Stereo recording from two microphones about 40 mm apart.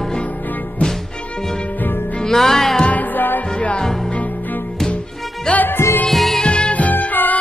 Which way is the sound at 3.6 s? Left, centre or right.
Left.